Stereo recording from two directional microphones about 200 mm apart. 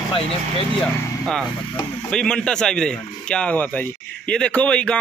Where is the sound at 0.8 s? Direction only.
5° left (ahead or behind).